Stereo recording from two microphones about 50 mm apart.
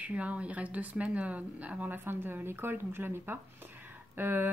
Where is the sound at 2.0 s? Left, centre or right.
Right.